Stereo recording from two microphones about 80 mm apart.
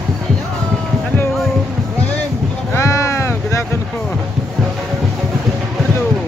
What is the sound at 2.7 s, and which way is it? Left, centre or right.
Sheep, left.